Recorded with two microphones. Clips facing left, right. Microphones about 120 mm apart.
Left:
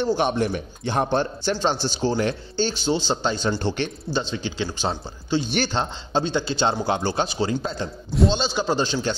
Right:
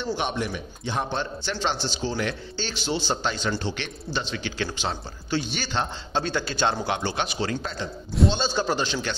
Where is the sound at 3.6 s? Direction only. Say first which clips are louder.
Left 6 dB; 45° left (ahead or behind).